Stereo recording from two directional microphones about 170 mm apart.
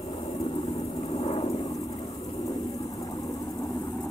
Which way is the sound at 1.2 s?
35° left (ahead or behind).